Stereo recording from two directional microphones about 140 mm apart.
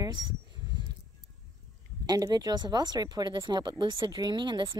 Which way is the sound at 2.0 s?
30° right (ahead or behind).